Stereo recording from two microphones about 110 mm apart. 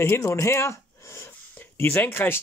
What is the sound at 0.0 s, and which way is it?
Speech, 25° left (ahead or behind).